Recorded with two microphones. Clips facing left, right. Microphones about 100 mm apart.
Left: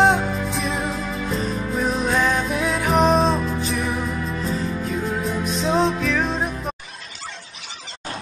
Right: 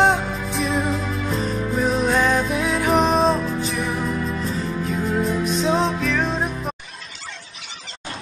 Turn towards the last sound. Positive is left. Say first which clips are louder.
# even
turn(degrees=0)  # may be behind; listen again after turning